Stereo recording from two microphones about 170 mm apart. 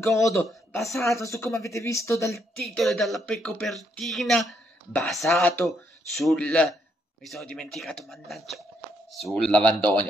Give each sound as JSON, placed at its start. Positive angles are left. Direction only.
{"t": 0.0, "sound": "speech", "side_deg": 20}
{"t": 0.7, "sound": "speech", "side_deg": 0}
{"t": 1.1, "sound": "speech", "side_deg": 15}
{"t": 2.7, "sound": "speech", "side_deg": 0}